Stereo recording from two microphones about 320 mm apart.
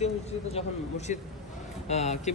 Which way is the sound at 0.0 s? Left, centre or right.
Centre.